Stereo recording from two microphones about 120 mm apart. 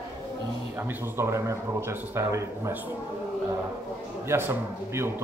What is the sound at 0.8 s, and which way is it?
Speech, 20° right (ahead or behind).